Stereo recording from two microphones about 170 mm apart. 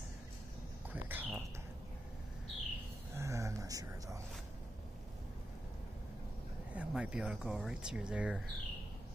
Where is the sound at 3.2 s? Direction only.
15° right (ahead or behind).